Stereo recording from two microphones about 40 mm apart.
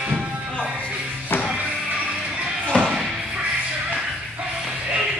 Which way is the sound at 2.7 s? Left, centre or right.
Left.